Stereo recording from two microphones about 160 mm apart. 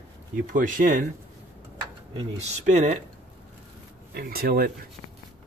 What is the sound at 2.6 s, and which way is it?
Speech, 45° right (ahead or behind).